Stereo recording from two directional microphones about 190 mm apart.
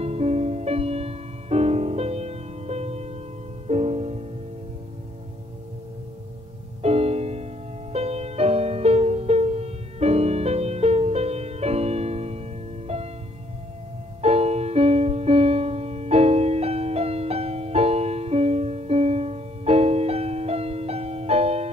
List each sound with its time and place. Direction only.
0.0 s music: 35° right (ahead or behind)
6.8 s music: 35° right (ahead or behind)
14.2 s music: 35° right (ahead or behind)